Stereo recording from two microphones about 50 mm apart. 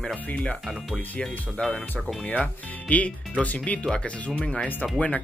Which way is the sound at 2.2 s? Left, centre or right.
Left.